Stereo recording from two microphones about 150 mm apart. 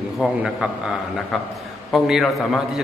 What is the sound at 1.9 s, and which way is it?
Speech, centre (ahead or behind).